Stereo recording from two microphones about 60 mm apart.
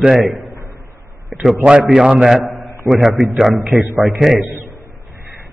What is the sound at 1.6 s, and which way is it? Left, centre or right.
A man's voice, centre.